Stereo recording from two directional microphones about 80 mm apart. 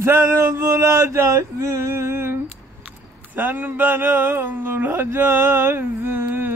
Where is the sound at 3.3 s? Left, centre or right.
Right.